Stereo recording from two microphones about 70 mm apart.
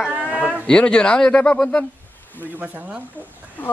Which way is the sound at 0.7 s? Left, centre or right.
Centre.